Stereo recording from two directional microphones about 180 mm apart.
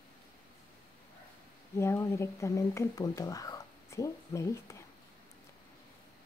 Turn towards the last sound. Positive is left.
turn(degrees=15)  # may be behind; listen again after turning